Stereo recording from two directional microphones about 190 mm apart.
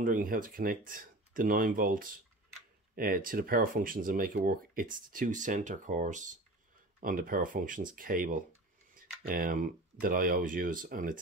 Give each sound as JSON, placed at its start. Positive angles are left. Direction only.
{"t": 0.0, "sound": "speech", "side_deg": -45}